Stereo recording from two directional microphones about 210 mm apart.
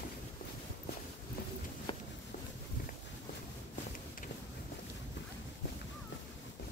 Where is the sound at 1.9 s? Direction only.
25° left (ahead or behind).